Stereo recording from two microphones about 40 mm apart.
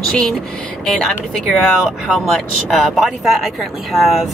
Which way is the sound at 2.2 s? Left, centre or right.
Centre.